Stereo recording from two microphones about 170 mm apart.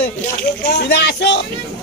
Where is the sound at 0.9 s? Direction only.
75° left (ahead or behind).